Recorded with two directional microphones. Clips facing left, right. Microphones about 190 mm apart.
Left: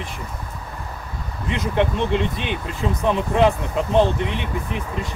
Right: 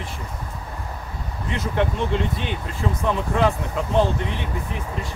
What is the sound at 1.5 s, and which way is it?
Speech, 20° left (ahead or behind).